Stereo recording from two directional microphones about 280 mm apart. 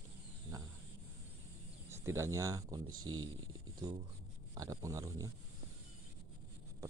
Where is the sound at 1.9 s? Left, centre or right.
Centre.